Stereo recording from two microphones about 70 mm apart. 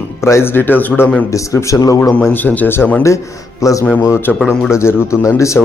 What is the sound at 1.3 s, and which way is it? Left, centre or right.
Speech, left.